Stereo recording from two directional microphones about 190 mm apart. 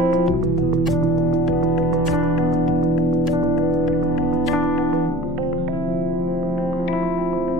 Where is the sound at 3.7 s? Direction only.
Centre (ahead or behind).